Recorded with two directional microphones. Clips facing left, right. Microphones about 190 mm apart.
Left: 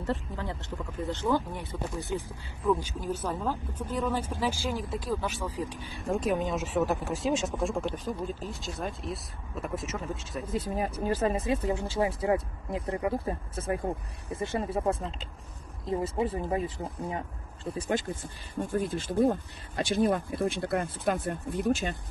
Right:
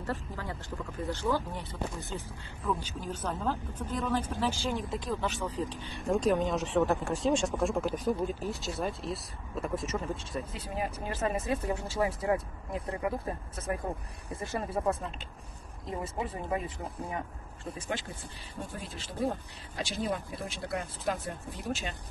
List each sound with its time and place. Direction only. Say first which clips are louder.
0.0 s speech: left 4 dB; 20° left (ahead or behind)
5.9 s speech: right 2 dB; centre (ahead or behind)
7.9 s speech: right 3 dB; 15° right (ahead or behind)
8.5 s speech: right 2 dB; centre (ahead or behind)
10.5 s speech: left 5 dB; 45° left (ahead or behind); by 13.1 s 30° left (ahead or behind)
14.4 s speech: left 2 dB; 25° left (ahead or behind)
17.7 s speech: left 8 dB; 40° left (ahead or behind)